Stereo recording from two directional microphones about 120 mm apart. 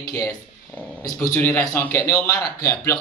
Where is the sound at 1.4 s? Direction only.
15° left (ahead or behind).